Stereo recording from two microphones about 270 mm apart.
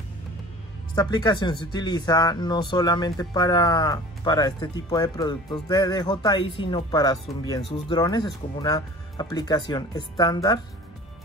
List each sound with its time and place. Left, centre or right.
0.9 s speech: centre